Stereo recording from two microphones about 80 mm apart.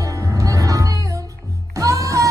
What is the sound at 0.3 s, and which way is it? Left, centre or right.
Music, right.